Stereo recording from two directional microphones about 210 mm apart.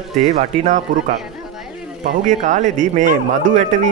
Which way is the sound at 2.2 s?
35° right (ahead or behind).